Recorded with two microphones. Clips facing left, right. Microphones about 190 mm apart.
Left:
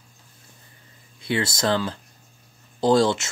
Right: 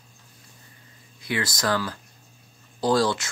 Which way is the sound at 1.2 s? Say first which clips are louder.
Left 3 dB; 25° left (ahead or behind).